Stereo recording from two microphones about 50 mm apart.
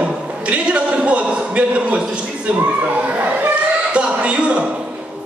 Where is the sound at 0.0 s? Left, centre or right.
Right.